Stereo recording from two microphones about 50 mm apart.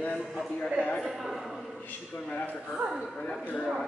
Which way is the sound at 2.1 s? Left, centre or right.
Left.